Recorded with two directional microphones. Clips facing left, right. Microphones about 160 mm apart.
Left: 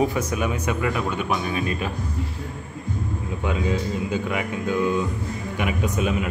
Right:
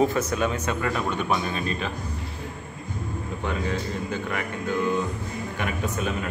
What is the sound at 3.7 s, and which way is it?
Speech, 15° left (ahead or behind).